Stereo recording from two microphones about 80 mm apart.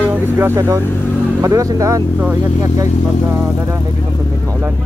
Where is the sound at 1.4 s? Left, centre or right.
Right.